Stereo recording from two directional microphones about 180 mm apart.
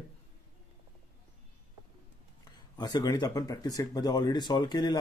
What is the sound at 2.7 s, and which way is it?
Speech, 20° left (ahead or behind).